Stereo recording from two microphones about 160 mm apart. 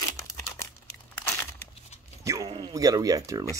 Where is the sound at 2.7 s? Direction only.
25° right (ahead or behind).